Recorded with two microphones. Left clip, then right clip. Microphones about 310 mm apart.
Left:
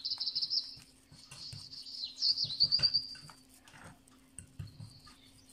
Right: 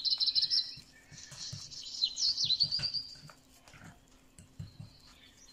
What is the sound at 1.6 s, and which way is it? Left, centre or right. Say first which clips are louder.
Bird: right 9 dB; right.